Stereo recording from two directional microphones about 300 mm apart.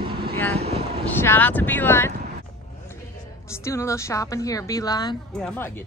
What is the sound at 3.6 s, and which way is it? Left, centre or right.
A woman's voice, centre.